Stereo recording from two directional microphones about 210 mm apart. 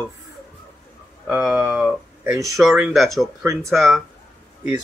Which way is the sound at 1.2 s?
5° right (ahead or behind).